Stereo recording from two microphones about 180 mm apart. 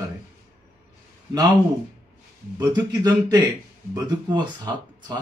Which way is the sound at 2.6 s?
20° right (ahead or behind).